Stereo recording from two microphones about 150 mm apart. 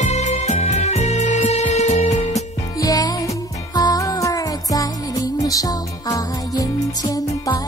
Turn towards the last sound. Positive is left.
turn(degrees=25)  # may be behind; listen again after turning